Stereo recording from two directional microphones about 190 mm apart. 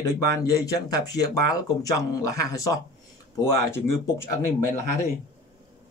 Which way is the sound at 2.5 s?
15° left (ahead or behind).